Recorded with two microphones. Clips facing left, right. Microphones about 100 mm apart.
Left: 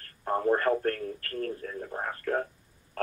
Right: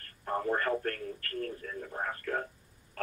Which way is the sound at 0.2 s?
35° left (ahead or behind).